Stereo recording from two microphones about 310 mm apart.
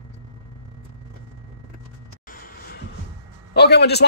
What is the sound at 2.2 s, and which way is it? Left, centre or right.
Music, left.